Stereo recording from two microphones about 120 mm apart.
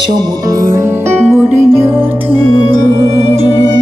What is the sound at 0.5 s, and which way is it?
Music, 30° right (ahead or behind).